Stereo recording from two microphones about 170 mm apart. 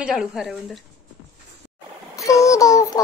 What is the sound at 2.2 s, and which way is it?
Child singing, 20° left (ahead or behind).